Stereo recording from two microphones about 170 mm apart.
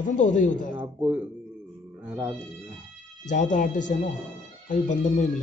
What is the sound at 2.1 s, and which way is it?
Speech, 5° right (ahead or behind).